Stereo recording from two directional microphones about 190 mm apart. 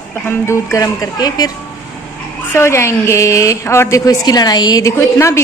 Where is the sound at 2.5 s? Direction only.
15° left (ahead or behind).